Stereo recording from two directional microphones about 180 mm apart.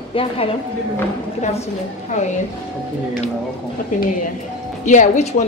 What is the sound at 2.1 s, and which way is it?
Speech, 40° left (ahead or behind).